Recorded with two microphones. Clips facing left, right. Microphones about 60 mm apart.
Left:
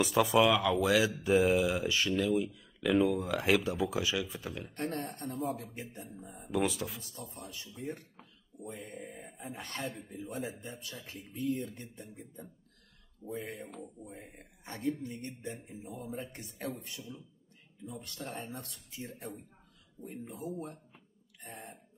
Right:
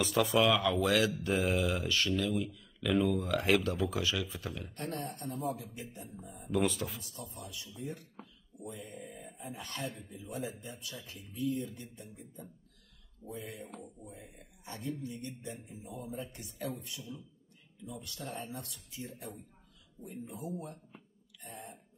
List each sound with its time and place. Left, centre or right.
0.0 s speech: centre
4.9 s speech: left
6.4 s speech: centre
7.0 s speech: left